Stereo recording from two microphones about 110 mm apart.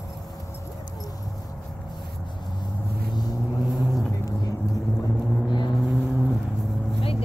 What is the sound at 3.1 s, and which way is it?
Vehicle, 40° left (ahead or behind).